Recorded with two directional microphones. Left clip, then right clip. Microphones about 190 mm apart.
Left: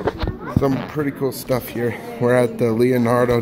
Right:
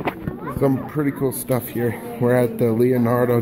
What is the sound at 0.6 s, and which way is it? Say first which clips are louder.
Speech: even; 5° right (ahead or behind).